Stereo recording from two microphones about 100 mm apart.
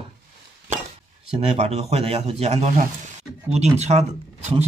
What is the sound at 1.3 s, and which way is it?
Speech, 90° right.